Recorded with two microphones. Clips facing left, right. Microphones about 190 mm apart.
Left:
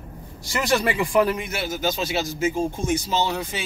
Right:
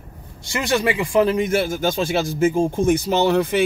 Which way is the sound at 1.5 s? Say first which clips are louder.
Right 6 dB; 50° right (ahead or behind).